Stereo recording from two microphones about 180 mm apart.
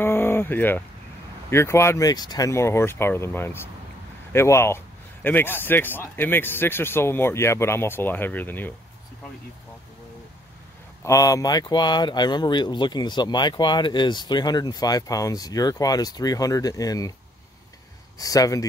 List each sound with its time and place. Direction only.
0.0 s a sound: 10° left (ahead or behind)
1.5 s a man's voice: 15° left (ahead or behind)
11.1 s speech: 20° left (ahead or behind)
18.1 s speech: 20° left (ahead or behind)